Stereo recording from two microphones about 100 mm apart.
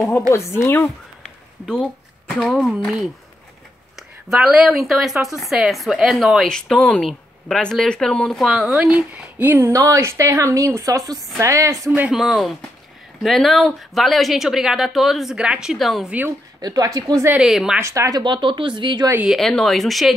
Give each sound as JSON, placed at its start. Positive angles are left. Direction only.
{"t": 0.3, "sound": "speech", "side_deg": 30}
{"t": 0.8, "sound": "a sound", "side_deg": 5}
{"t": 4.3, "sound": "speech", "side_deg": -5}
{"t": 9.7, "sound": "a woman's voice", "side_deg": -30}
{"t": 12.1, "sound": "speech", "side_deg": 0}
{"t": 16.6, "sound": "a woman's voice", "side_deg": -40}
{"t": 17.4, "sound": "speech", "side_deg": -5}
{"t": 17.7, "sound": "a woman's voice", "side_deg": -30}
{"t": 18.2, "sound": "speech", "side_deg": -50}
{"t": 19.2, "sound": "speech", "side_deg": 0}